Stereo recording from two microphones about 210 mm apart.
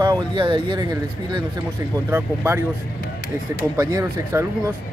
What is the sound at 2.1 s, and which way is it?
Speech, 10° right (ahead or behind).